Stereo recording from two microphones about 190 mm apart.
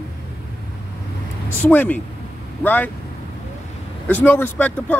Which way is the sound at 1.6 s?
10° left (ahead or behind).